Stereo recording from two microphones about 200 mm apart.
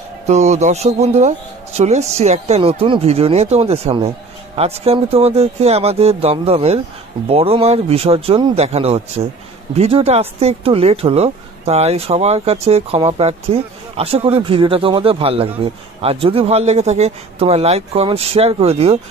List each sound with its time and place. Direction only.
0.3 s speech: 35° right (ahead or behind)